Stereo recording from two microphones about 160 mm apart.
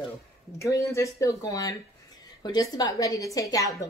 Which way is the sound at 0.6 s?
20° left (ahead or behind).